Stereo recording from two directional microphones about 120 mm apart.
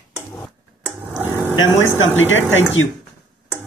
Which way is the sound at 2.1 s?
20° left (ahead or behind).